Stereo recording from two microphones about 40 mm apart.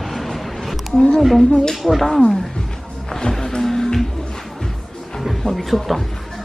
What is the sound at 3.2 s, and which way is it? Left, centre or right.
Music, centre.